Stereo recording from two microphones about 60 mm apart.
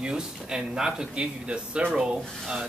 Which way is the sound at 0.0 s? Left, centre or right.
Centre.